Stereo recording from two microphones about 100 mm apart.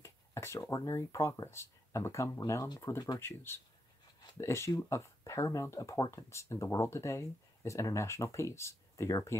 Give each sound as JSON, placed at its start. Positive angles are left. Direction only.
{"t": 0.0, "sound": "speech", "side_deg": 30}
{"t": 3.2, "sound": "speech", "side_deg": 25}